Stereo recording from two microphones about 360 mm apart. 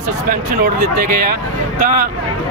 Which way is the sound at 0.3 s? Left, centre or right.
Right.